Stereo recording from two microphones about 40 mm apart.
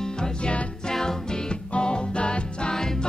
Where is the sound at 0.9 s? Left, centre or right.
Centre.